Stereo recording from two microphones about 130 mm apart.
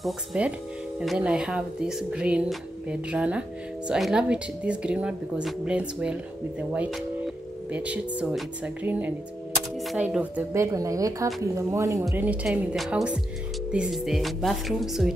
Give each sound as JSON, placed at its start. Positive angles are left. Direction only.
{"t": 0.0, "sound": "speech", "side_deg": -5}
{"t": 10.5, "sound": "speech", "side_deg": -25}
{"t": 12.3, "sound": "speech", "side_deg": 0}